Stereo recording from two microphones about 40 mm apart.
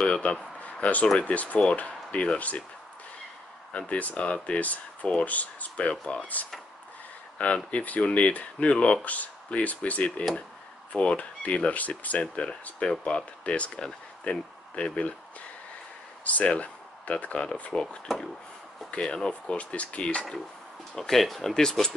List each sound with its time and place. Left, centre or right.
0.0 s speech: left
3.7 s speech: left
7.3 s speech: left
16.3 s speech: left
17.7 s speech: centre
18.9 s speech: left
19.5 s speech: left
21.1 s speech: centre